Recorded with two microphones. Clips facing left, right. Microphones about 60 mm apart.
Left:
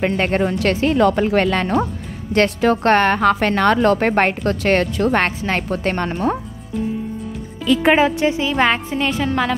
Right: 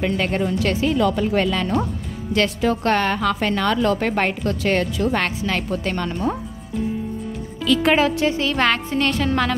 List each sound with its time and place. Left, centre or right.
0.0 s a woman's voice: left
7.6 s speech: centre